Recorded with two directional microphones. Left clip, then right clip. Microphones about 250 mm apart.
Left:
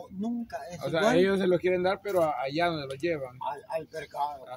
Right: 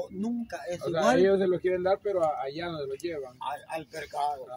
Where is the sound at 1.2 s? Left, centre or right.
Left.